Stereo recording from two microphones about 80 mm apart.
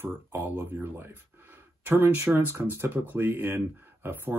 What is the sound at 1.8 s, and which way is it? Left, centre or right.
Speech, right.